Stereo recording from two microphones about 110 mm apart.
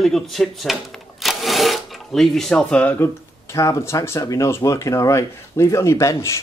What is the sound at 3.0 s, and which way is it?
Speech, 25° left (ahead or behind).